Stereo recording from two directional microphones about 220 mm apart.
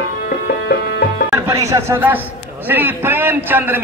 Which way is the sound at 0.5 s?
45° left (ahead or behind).